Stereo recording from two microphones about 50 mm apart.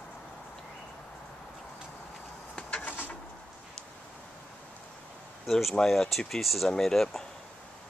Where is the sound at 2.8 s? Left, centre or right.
Left.